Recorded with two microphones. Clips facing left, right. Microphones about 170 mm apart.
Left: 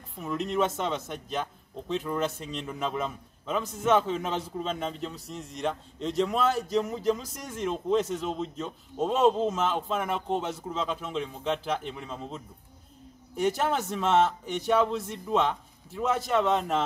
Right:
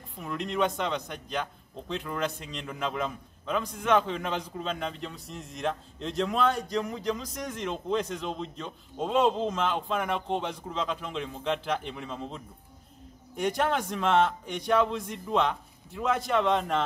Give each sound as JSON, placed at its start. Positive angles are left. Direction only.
{"t": 0.1, "sound": "a man's voice", "side_deg": 0}
{"t": 13.4, "sound": "a man's voice", "side_deg": 5}